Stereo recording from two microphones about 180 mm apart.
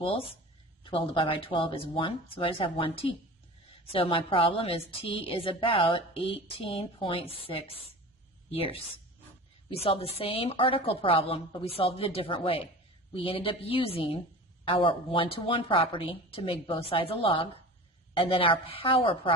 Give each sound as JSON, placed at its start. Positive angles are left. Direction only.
{"t": 0.0, "sound": "speech", "side_deg": 30}